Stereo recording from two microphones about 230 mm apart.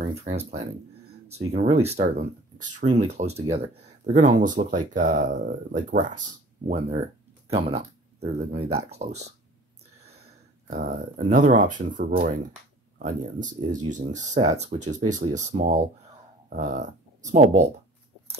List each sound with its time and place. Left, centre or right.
0.0 s speech: right
7.5 s speech: right
10.7 s speech: right